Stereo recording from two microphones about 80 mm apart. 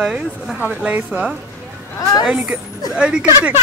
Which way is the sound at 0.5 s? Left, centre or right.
Centre.